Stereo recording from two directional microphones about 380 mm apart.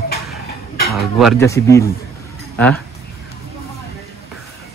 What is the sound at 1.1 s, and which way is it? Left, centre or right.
Cutlery, centre.